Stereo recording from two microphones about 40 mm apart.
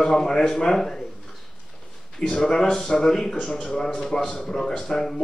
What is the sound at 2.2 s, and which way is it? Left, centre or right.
Speech, centre.